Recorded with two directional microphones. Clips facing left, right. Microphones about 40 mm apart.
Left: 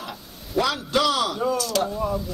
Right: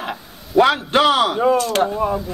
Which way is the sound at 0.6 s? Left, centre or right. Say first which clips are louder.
Right 8 dB; right.